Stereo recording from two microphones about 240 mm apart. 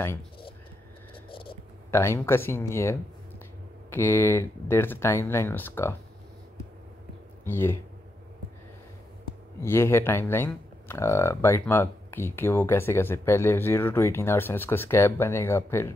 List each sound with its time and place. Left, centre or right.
1.3 s a sound: left
1.9 s speech: centre
7.4 s speech: centre
9.6 s speech: centre